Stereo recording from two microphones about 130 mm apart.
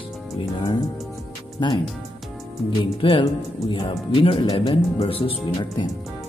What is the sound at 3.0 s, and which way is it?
Speech, 40° left (ahead or behind).